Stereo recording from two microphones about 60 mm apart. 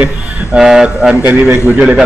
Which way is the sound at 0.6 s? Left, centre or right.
Centre.